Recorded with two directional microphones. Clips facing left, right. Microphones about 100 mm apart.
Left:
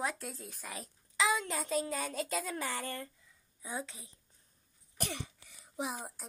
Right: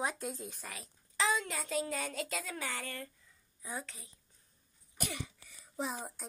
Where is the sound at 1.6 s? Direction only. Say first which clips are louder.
Left 2 dB; 25° left (ahead or behind).